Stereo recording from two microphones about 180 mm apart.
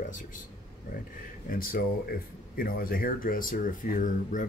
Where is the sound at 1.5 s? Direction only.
55° left (ahead or behind).